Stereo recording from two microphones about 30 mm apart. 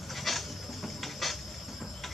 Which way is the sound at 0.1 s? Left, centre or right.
Centre.